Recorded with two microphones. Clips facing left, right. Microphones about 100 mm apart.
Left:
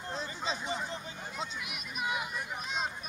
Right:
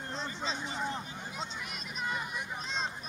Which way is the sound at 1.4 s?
10° left (ahead or behind).